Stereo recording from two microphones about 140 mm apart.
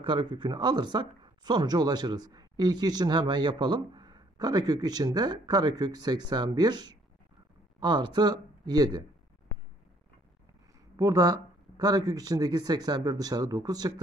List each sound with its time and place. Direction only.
0.0 s speech: 35° right (ahead or behind)
11.0 s speech: 25° right (ahead or behind)